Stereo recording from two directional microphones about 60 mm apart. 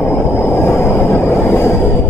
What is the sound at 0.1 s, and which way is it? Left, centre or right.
Vehicle, left.